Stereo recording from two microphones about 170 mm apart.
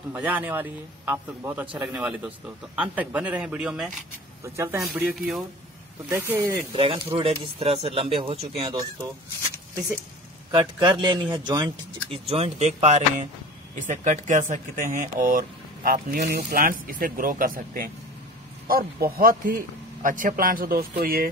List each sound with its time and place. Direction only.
0.1 s speech: 10° right (ahead or behind)
6.7 s speech: 35° right (ahead or behind)
10.5 s speech: 25° right (ahead or behind)
12.1 s speech: 35° right (ahead or behind); by 21.3 s 60° right (ahead or behind)